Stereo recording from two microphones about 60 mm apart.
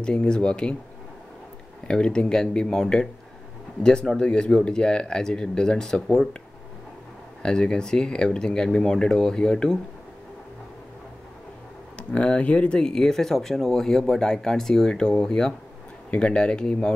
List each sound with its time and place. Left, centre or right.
0.0 s speech: centre
1.9 s speech: centre
7.4 s speech: centre
12.0 s speech: centre